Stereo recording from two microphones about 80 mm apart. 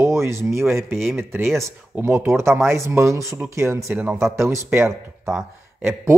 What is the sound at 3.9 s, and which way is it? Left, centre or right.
Speech, right.